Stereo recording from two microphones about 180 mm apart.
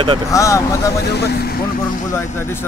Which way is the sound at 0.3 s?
15° left (ahead or behind).